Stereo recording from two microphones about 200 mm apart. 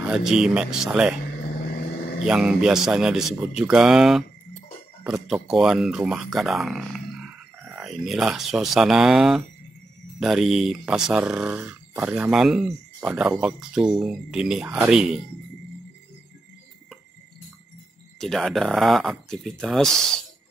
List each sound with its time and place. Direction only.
0.0 s speech: 5° right (ahead or behind)
1.8 s vehicle: 50° left (ahead or behind)
2.2 s speech: 5° right (ahead or behind)
5.3 s speech: 5° right (ahead or behind)
18.2 s speech: centre (ahead or behind)